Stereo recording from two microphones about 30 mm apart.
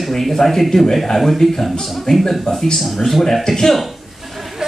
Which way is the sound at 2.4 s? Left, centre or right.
Centre.